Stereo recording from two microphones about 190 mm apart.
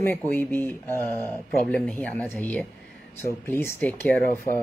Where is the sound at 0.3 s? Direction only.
10° left (ahead or behind).